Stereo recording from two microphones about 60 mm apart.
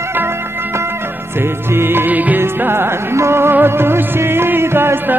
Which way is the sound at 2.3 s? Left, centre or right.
Right.